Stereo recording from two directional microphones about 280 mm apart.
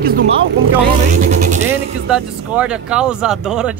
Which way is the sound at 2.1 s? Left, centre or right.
Centre.